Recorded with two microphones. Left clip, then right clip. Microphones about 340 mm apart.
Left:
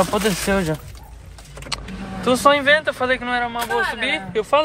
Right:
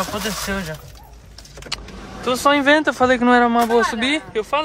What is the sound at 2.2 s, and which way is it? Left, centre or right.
Speech, centre.